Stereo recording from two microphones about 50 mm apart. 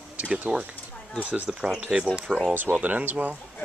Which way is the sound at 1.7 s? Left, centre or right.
Centre.